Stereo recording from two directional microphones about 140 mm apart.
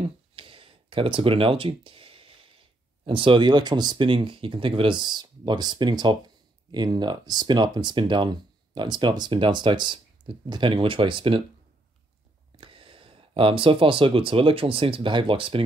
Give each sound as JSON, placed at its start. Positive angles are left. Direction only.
{"t": 0.0, "sound": "a sound", "side_deg": -40}
{"t": 3.1, "sound": "speech", "side_deg": -35}
{"t": 12.5, "sound": "speech", "side_deg": -40}